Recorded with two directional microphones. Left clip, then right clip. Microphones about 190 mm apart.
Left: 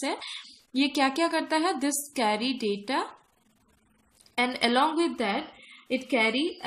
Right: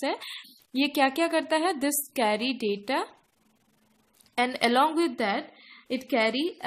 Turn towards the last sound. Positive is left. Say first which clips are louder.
# even
turn(degrees=-45)  # may be behind; listen again after turning